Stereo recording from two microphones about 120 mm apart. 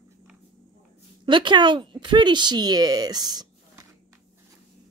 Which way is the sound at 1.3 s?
40° right (ahead or behind).